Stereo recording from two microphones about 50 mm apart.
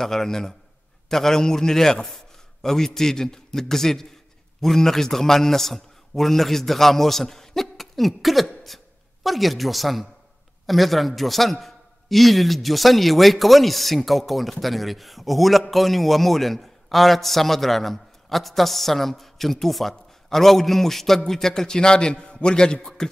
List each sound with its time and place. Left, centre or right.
0.0 s a man's voice: centre